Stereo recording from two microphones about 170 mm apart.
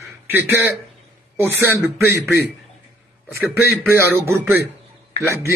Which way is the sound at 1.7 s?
15° right (ahead or behind).